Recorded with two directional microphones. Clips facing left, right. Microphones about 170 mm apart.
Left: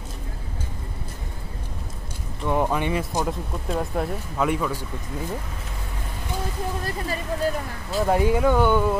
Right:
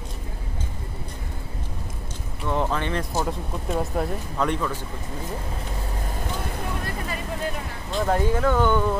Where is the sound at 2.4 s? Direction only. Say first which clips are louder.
Left 2 dB; 15° left (ahead or behind).